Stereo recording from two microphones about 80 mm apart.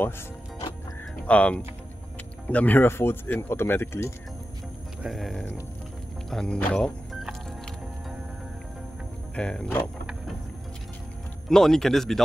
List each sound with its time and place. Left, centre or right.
1.2 s speech: centre; by 4.1 s left
5.0 s speech: centre
9.3 s speech: centre
11.4 s speech: centre